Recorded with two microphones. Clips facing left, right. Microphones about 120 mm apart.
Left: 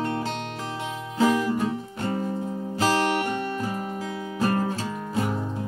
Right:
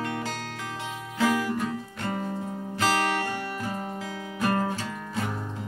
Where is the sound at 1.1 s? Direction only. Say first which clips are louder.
Left 3 dB; 25° left (ahead or behind).